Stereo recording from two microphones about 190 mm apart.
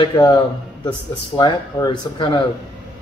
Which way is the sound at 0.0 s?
25° left (ahead or behind).